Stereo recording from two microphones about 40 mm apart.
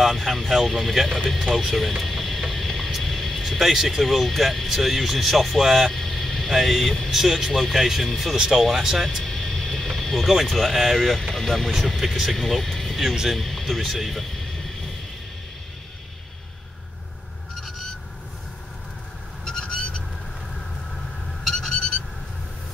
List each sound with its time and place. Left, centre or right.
0.0 s speech: centre
2.0 s vehicle: centre
3.7 s speech: centre
9.2 s vehicle: centre
10.3 s speech: centre
13.7 s a sound: centre
19.4 s bird: centre
21.5 s a sound: centre